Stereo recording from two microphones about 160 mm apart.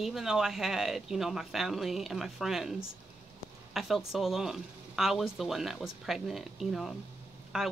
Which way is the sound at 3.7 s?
Centre (ahead or behind).